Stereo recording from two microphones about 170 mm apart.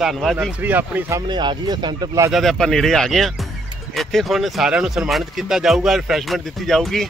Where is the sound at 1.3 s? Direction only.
25° right (ahead or behind).